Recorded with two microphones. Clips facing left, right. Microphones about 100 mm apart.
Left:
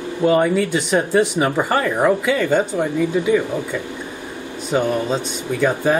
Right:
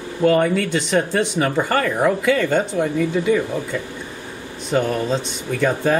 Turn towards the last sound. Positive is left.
turn(degrees=5)  # may be behind; listen again after turning